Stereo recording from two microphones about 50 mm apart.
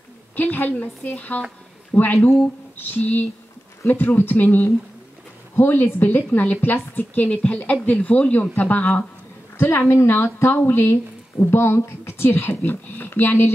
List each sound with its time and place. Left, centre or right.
0.4 s a woman's voice: left
7.2 s a woman's voice: left
9.6 s speech: left